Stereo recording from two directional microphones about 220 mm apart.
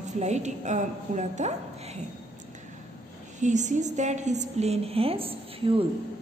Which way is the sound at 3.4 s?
35° right (ahead or behind).